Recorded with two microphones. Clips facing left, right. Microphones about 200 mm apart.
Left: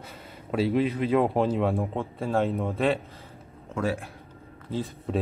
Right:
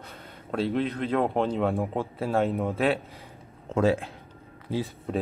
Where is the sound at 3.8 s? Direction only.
25° right (ahead or behind).